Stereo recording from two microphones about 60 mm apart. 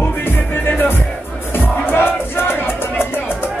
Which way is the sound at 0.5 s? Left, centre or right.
Left.